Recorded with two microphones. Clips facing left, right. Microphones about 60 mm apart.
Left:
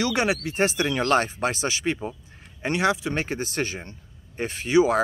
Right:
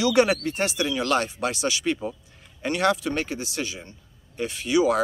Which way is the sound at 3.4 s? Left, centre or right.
Left.